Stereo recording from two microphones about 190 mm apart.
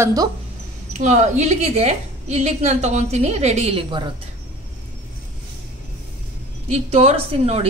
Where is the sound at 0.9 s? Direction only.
40° right (ahead or behind).